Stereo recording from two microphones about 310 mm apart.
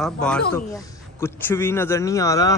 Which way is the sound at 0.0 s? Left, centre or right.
Centre.